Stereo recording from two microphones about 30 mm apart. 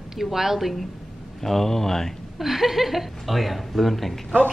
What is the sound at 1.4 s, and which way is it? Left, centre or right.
Speech, centre.